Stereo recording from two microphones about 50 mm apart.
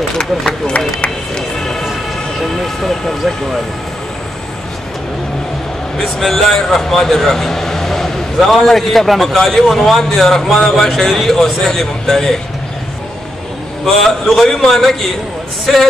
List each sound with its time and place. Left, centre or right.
0.5 s speech: centre
1.3 s music: centre
2.6 s speech: centre
5.9 s speech: centre
13.8 s speech: centre